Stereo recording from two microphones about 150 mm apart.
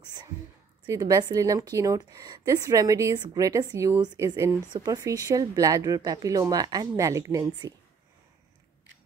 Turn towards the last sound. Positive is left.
turn(degrees=-20)  # may be behind; listen again after turning